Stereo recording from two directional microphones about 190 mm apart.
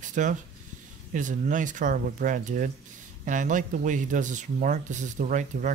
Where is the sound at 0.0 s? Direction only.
40° right (ahead or behind).